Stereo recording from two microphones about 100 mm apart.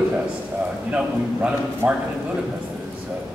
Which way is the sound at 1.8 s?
15° right (ahead or behind).